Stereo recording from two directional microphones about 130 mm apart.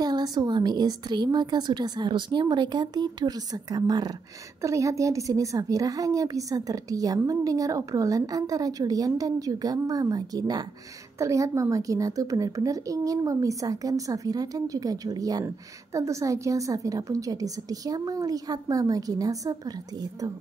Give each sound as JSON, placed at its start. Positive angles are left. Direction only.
{"t": 0.0, "sound": "a woman's voice", "side_deg": -30}